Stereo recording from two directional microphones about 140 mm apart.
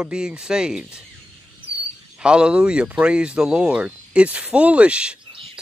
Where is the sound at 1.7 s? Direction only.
40° right (ahead or behind).